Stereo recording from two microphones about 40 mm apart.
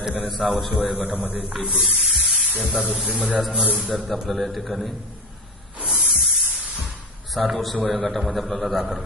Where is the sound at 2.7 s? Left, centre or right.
Right.